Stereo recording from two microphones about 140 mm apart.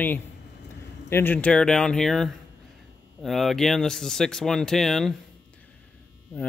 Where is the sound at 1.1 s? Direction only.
15° left (ahead or behind).